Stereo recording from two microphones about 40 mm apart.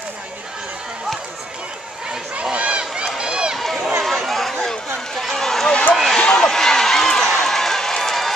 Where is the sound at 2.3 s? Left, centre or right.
Right.